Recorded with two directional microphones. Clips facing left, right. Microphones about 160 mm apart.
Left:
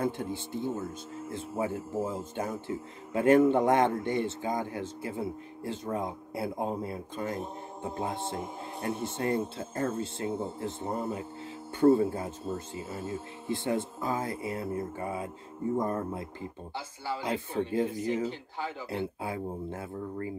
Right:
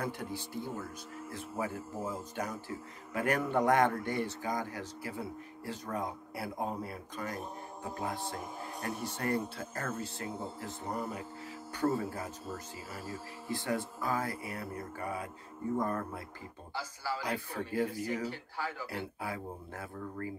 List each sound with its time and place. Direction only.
0.0 s speech: 25° left (ahead or behind)